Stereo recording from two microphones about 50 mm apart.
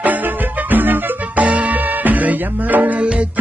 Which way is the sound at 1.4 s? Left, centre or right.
Right.